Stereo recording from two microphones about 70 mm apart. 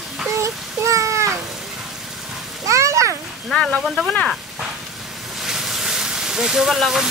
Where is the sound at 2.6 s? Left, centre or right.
Right.